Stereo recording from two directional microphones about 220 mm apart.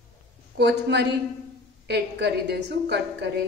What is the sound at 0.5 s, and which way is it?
A woman's voice, 50° right (ahead or behind).